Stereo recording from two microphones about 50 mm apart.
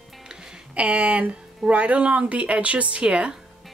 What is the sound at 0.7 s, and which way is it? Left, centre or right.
Speech, right.